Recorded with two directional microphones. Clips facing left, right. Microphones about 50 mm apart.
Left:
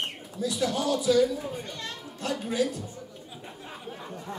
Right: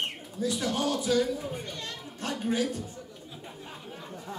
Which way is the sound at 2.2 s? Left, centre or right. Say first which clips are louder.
Left 1 dB; right.